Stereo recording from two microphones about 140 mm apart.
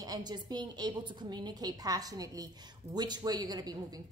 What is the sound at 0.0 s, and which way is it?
Speech, 30° right (ahead or behind).